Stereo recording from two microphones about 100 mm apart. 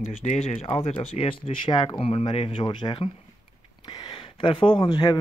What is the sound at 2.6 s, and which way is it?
Speech, 50° left (ahead or behind).